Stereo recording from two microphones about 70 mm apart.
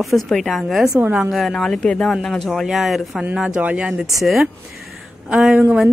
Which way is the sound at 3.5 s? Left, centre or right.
Centre.